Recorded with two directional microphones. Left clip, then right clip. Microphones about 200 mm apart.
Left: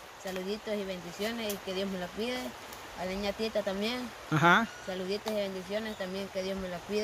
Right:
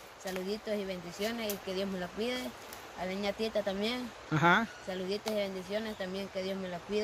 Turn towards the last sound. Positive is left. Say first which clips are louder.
# left 1 dB
turn(degrees=0)  # may be behind; listen again after turning